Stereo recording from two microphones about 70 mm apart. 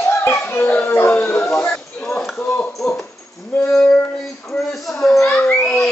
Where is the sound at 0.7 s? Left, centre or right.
Left.